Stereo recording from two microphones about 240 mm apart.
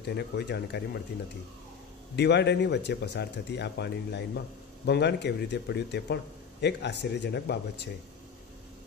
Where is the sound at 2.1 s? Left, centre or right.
Left.